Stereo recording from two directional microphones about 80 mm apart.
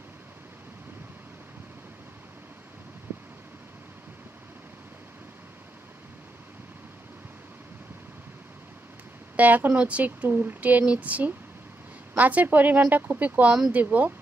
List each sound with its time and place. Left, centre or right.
9.4 s speech: right